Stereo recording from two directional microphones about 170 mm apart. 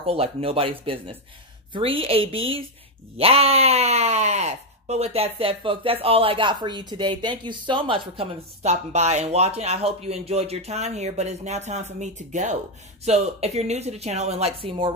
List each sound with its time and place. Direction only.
0.0 s speech: 35° right (ahead or behind)